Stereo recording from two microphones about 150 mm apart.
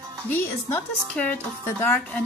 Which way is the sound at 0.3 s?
15° left (ahead or behind).